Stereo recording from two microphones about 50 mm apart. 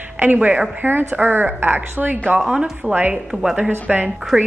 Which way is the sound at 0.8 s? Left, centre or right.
Right.